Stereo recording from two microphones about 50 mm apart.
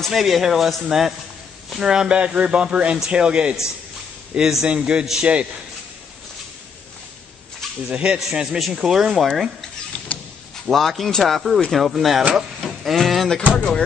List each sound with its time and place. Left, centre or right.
0.1 s a man's voice: centre
4.6 s speech: centre
7.9 s speech: centre
8.3 s speech: centre
10.1 s power windows: left
10.7 s a man's voice: centre
12.4 s sheep: centre
12.9 s a man's voice: centre
13.5 s speech: left